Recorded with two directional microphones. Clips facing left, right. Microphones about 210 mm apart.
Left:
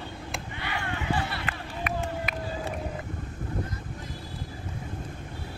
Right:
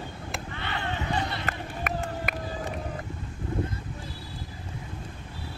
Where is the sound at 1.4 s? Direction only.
45° right (ahead or behind).